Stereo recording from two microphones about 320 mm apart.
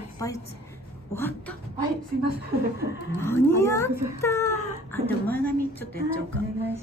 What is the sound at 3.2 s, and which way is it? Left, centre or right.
A woman's voice, centre.